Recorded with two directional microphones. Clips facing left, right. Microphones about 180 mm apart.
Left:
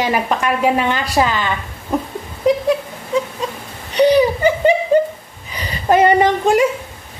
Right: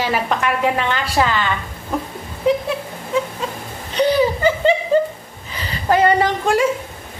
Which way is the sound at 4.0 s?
20° left (ahead or behind).